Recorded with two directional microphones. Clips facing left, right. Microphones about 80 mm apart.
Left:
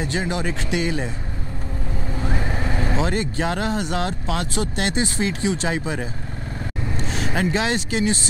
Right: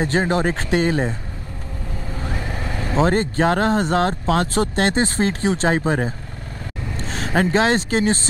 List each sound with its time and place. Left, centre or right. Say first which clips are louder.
0.0 s speech: right 5 dB; right
2.2 s vehicle: left 2 dB; left
3.0 s speech: right 9 dB; right